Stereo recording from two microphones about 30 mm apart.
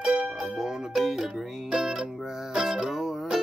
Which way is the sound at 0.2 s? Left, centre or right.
Centre.